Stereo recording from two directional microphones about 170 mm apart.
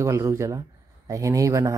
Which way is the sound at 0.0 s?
15° right (ahead or behind).